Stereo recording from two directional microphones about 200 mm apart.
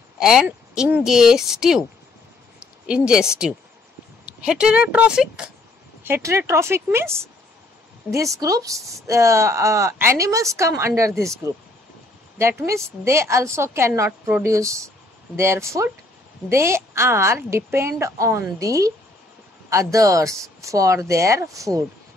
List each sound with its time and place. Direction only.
0.2 s a woman's voice: 5° right (ahead or behind)
8.4 s a woman's voice: 15° right (ahead or behind)
12.4 s a woman's voice: 15° right (ahead or behind)